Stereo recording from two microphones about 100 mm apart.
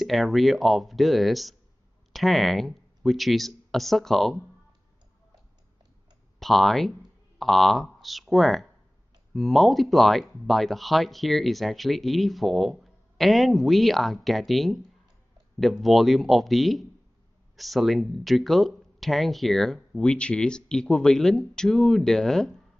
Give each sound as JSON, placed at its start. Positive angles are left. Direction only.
{"t": 0.0, "sound": "speech", "side_deg": 0}
{"t": 6.4, "sound": "speech", "side_deg": 0}